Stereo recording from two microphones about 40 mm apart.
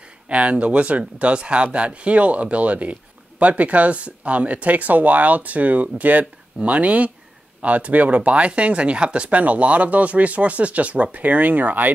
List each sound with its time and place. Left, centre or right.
0.3 s speech: right
9.4 s speech: right